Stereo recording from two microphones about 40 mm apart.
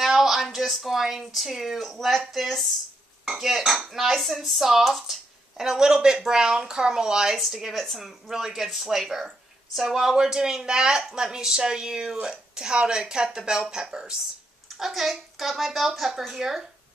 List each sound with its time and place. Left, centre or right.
0.0 s speech: centre
5.6 s speech: centre
7.3 s speech: centre
14.7 s speech: centre